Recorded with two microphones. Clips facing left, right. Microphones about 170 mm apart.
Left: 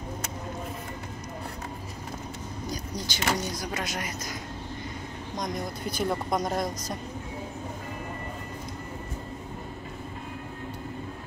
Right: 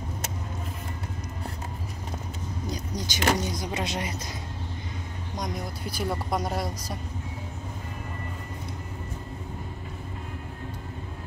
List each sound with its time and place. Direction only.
2.7 s speech: 25° right (ahead or behind)
5.4 s speech: 10° right (ahead or behind)